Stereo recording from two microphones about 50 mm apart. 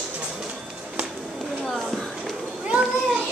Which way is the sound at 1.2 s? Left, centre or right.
Centre.